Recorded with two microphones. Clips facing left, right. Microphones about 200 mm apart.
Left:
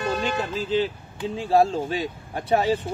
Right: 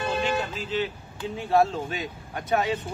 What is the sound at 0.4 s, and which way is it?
Speech, 35° left (ahead or behind).